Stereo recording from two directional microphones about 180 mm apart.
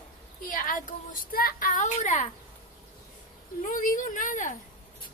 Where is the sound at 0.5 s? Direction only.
50° left (ahead or behind).